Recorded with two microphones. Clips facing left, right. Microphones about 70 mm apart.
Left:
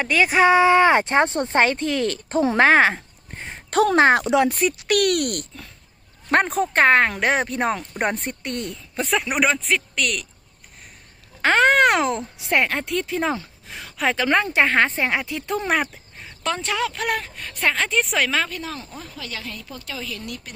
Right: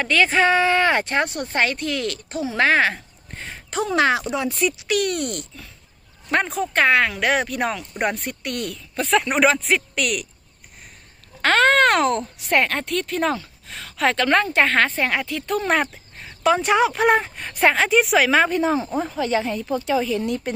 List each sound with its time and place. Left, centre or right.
0.0 s speech: centre; by 4.2 s left
4.2 s speech: left
4.6 s speech: left
6.3 s speech: left
9.1 s speech: centre
11.4 s speech: centre
15.6 s speech: centre
16.6 s a woman's voice: right
17.7 s a woman's voice: centre
18.3 s a woman's voice: right